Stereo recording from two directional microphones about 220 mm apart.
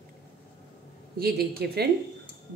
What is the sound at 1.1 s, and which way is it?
Speech, 45° right (ahead or behind).